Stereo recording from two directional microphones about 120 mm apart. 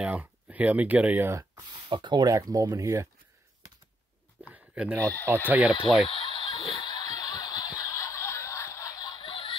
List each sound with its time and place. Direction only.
0.0 s speech: 10° right (ahead or behind)
1.7 s speech: 40° right (ahead or behind)
4.5 s a sound: 10° right (ahead or behind)
5.0 s speech: 15° left (ahead or behind)
5.5 s speech: 10° right (ahead or behind)
6.0 s fowl: 45° left (ahead or behind)
6.8 s snicker: 35° left (ahead or behind)
9.2 s snicker: 45° left (ahead or behind)